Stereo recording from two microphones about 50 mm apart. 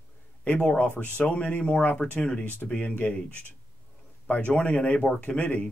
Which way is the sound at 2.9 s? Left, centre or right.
Left.